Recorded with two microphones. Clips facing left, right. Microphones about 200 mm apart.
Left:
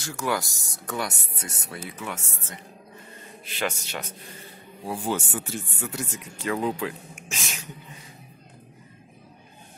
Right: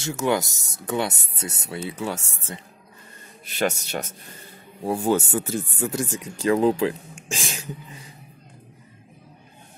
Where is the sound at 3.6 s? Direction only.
45° right (ahead or behind).